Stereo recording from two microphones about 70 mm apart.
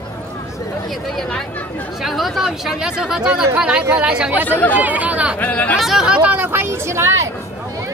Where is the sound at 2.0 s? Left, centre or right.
Centre.